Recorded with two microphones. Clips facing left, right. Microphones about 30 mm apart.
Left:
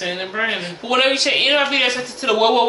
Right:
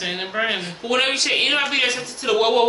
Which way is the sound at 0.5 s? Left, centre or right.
Centre.